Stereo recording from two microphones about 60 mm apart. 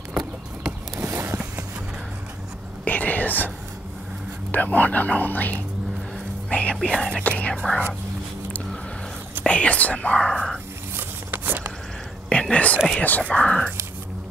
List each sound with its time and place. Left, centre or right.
0.9 s a sound: right
2.8 s whispering: left
4.5 s speech: left
6.8 s speech: centre
7.2 s speech: left
7.5 s speech: centre
9.5 s speech: left; by 10.6 s centre
11.0 s a sound: right
12.3 s speech: centre